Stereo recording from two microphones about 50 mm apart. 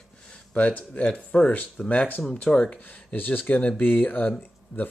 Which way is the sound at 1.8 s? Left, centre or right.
Left.